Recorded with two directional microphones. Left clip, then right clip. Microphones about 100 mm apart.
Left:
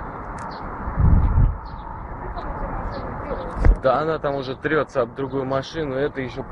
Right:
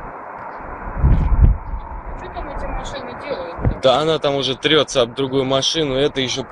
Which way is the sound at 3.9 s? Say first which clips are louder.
Right 5 dB; 50° right (ahead or behind).